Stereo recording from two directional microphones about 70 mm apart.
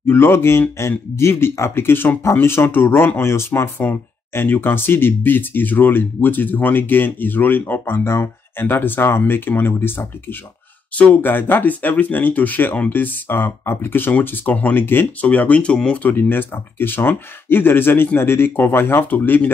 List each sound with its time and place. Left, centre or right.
0.0 s speech: left
11.0 s speech: left
15.2 s speech: left
16.1 s speech: left